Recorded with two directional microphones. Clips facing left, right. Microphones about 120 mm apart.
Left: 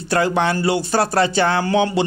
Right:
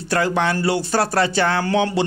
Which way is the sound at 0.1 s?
20° left (ahead or behind).